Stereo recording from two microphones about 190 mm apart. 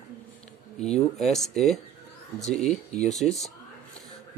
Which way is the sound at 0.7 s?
35° left (ahead or behind).